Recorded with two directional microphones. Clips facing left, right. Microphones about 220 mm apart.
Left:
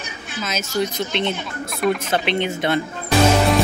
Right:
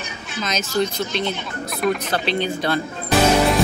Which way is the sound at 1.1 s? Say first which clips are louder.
Left 1 dB; 25° left (ahead or behind).